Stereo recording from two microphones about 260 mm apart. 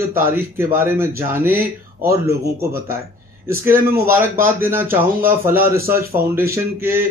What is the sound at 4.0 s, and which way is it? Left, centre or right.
Speech, centre.